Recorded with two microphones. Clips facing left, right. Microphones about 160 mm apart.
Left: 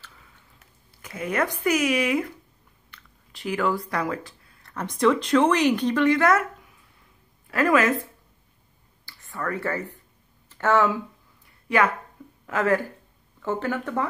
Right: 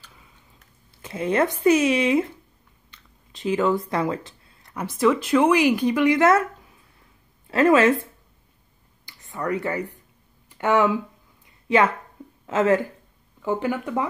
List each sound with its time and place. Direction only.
0.9 s speech: 25° right (ahead or behind)
2.9 s a sound: 20° right (ahead or behind)
4.7 s speech: 5° right (ahead or behind); by 6.4 s 20° right (ahead or behind)
7.4 s a woman's voice: 25° right (ahead or behind)
9.0 s speech: 20° right (ahead or behind)
11.6 s a sound: 25° right (ahead or behind)
12.4 s speech: 20° right (ahead or behind)